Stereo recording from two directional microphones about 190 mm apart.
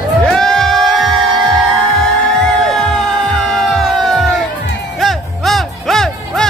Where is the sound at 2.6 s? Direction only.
Centre (ahead or behind).